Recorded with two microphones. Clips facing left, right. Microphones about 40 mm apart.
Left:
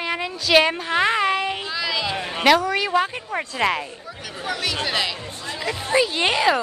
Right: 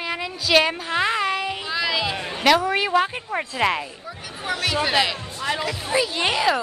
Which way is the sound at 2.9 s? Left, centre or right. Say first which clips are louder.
Right 1 dB; centre.